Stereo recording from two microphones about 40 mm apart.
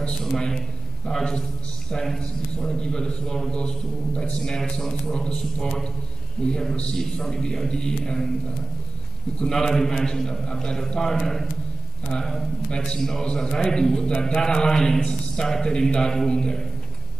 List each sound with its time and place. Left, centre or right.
0.4 s a man's voice: centre
9.5 s a man's voice: centre